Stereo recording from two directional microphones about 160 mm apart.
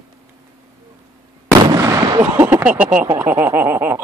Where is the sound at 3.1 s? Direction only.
15° right (ahead or behind).